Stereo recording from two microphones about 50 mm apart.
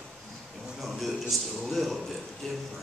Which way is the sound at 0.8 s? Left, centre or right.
Centre.